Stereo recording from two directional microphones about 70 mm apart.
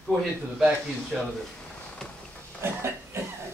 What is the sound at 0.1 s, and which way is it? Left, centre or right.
A man's voice, centre.